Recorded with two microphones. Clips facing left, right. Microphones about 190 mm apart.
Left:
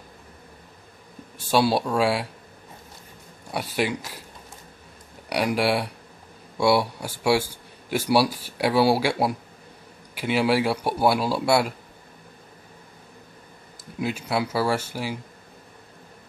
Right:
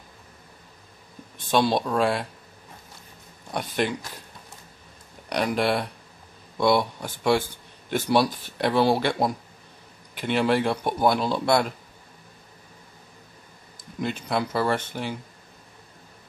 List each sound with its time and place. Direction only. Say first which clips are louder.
1.4 s speech: left 1 dB; 10° left (ahead or behind)
3.5 s speech: even; 5° left (ahead or behind)
5.3 s speech: left 1 dB; 10° left (ahead or behind)
13.9 s speech: left 1 dB; 5° left (ahead or behind)